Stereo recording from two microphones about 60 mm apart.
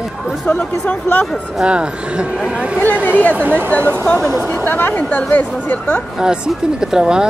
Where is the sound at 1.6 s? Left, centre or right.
Centre.